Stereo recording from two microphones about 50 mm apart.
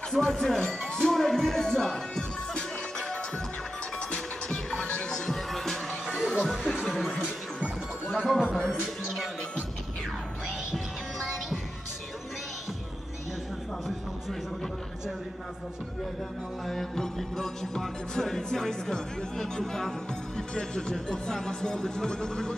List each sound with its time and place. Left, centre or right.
0.2 s music: centre
5.5 s music: centre
6.7 s chatter: centre
7.2 s music: centre
8.5 s music: centre
10.7 s music: centre
16.6 s music: centre